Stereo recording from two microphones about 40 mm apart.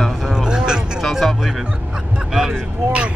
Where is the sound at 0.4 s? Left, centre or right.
Centre.